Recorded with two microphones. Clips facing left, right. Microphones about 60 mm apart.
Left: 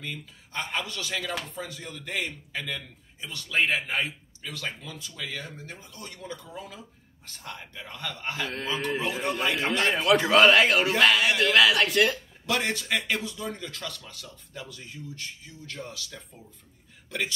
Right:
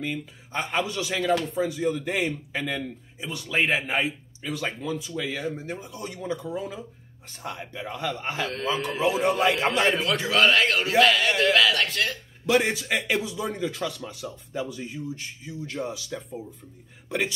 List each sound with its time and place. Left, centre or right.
0.0 s a man's voice: centre
8.4 s a man's voice: centre
9.0 s a man's voice: centre
12.4 s a man's voice: centre